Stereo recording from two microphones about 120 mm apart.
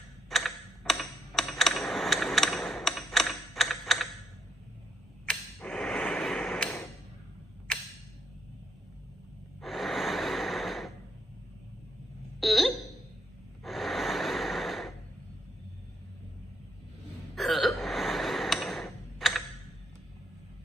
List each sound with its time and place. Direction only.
0.3 s typewriter: centre (ahead or behind)
5.2 s a sound: 10° left (ahead or behind)
9.6 s gasp: centre (ahead or behind)
12.4 s a sound: centre (ahead or behind)
13.7 s snort: centre (ahead or behind)
17.4 s hiccup: centre (ahead or behind)